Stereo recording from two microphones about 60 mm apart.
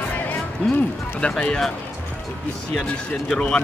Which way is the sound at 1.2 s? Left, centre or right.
Centre.